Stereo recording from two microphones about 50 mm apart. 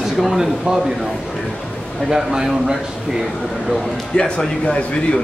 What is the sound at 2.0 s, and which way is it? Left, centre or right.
Speech, centre.